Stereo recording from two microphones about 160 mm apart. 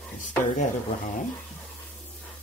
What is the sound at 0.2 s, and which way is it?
Speech, 50° left (ahead or behind).